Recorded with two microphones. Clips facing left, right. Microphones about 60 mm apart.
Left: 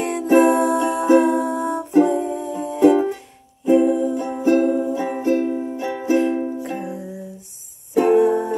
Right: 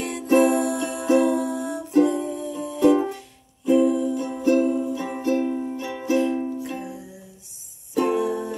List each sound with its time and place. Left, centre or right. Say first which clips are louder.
0.0 s music: left 4 dB; left
1.9 s music: left 2 dB; left